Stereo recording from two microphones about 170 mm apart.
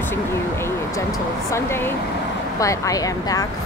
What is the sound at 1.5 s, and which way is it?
Speech, 15° left (ahead or behind).